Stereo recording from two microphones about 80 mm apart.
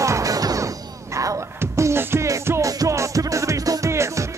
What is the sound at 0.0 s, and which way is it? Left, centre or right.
Music, right.